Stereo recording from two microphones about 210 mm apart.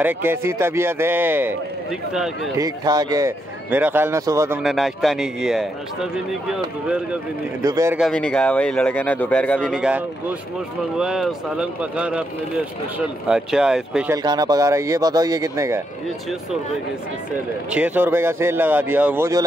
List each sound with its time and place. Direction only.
0.0 s speech: 10° right (ahead or behind)
2.5 s speech: 15° right (ahead or behind)
4.6 s speech: centre (ahead or behind)
7.6 s speech: 15° right (ahead or behind)
8.0 s speech: 5° left (ahead or behind)
13.3 s speech: 5° right (ahead or behind)
14.1 s speech: 20° right (ahead or behind)
17.6 s speech: 5° right (ahead or behind)